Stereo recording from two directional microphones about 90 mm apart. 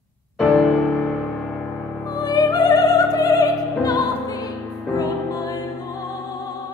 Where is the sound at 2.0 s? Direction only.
45° left (ahead or behind).